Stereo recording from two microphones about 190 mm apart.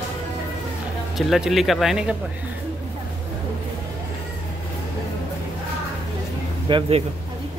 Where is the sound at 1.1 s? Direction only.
Centre (ahead or behind).